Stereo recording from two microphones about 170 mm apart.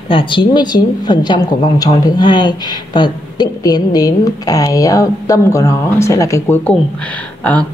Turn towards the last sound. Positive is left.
turn(degrees=10)  # may be behind; listen again after turning